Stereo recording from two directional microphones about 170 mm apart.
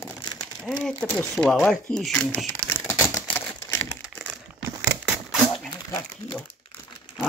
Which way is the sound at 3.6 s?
20° left (ahead or behind).